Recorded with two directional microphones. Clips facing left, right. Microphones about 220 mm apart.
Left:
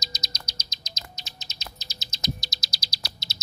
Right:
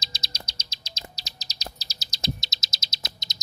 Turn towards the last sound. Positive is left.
turn(degrees=-20)  # may be behind; listen again after turning